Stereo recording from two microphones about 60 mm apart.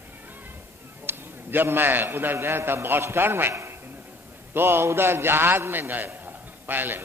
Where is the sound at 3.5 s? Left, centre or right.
Right.